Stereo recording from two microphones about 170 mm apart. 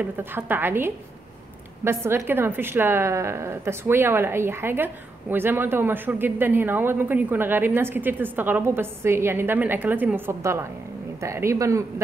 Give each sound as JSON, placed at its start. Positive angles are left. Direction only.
{"t": 0.0, "sound": "a woman's voice", "side_deg": -10}